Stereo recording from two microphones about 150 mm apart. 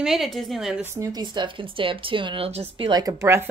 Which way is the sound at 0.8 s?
20° right (ahead or behind).